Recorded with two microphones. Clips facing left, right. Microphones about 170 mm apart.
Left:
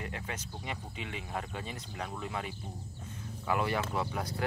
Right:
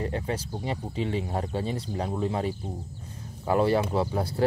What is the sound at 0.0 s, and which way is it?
Speech, 35° right (ahead or behind).